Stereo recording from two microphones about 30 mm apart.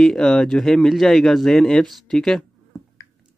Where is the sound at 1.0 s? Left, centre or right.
Centre.